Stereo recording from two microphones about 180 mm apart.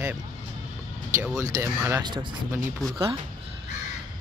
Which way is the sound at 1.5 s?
15° right (ahead or behind).